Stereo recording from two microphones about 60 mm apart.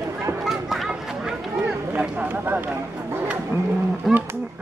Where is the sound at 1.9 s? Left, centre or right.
Right.